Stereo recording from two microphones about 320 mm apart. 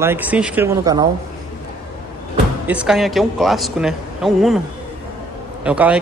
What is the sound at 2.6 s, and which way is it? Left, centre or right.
Speech, centre.